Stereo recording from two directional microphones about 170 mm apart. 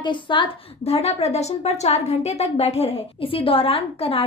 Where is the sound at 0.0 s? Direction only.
30° left (ahead or behind).